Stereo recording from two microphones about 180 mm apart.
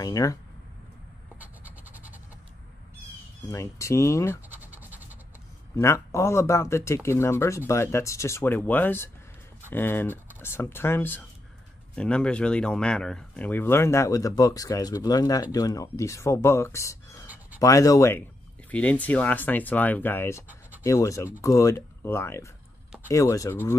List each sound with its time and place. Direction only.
0.0 s speech: 20° left (ahead or behind)
1.4 s scratch: 10° right (ahead or behind)
3.4 s speech: 15° left (ahead or behind)
4.5 s scratch: 10° right (ahead or behind)
5.8 s speech: 15° left (ahead or behind)